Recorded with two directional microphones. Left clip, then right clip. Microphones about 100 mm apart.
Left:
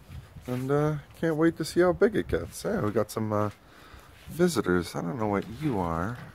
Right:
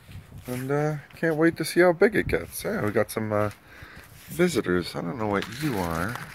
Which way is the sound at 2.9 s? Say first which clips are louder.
Right 3 dB; 15° left (ahead or behind).